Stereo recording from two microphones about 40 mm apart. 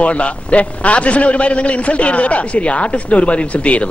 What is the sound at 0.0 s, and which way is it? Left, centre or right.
A man's voice, left.